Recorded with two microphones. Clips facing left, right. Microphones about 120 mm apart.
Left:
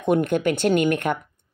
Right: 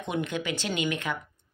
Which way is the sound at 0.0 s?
50° left (ahead or behind).